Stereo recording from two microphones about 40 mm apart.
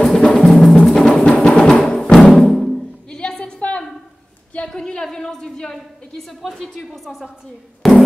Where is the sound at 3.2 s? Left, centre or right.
Centre.